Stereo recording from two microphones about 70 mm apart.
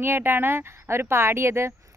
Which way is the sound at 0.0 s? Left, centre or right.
Right.